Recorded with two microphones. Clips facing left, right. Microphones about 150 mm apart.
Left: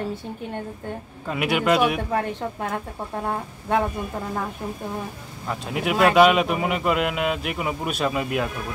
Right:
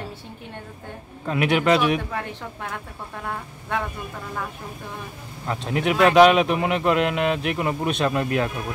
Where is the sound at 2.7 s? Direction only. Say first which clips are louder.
Left 6 dB; 30° left (ahead or behind).